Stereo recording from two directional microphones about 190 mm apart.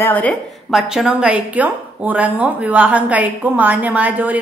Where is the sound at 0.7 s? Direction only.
Centre (ahead or behind).